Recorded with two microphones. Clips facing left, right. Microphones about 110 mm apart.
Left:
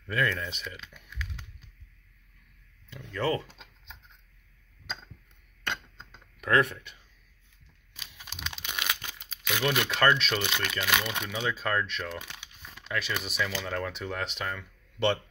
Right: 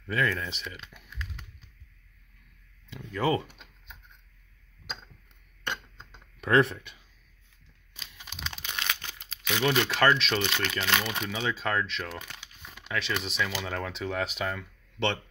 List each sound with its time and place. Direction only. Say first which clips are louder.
0.0 s speech: right 1 dB; centre (ahead or behind)
3.1 s speech: right 2 dB; 15° right (ahead or behind)
3.4 s a sound: left 1 dB; 90° left
6.4 s speech: right 2 dB; 30° right (ahead or behind)
7.9 s crumpling: even; 5° left (ahead or behind)
9.7 s speech: right 1 dB; centre (ahead or behind)
12.2 s speech: even; 20° left (ahead or behind)
12.6 s speech: right 1 dB; 5° right (ahead or behind)
13.5 s speech: left 1 dB; 10° right (ahead or behind)